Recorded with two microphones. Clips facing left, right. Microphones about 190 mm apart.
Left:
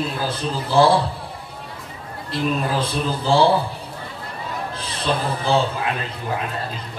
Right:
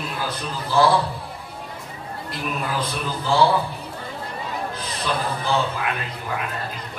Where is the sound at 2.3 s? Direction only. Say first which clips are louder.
Left 6 dB; 30° left (ahead or behind).